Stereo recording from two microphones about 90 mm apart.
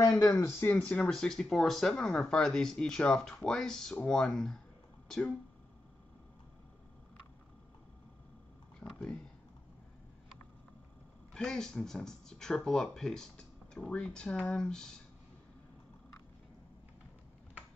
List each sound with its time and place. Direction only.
0.0 s speech: 35° left (ahead or behind)
0.4 s speech: 25° left (ahead or behind)
0.7 s speech: 10° left (ahead or behind)
5.0 s a sound: 5° left (ahead or behind)
8.7 s speech: 5° left (ahead or behind)
11.3 s speech: 10° left (ahead or behind)